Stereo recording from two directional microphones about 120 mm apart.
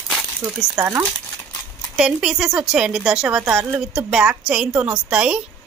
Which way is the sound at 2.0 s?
5° right (ahead or behind).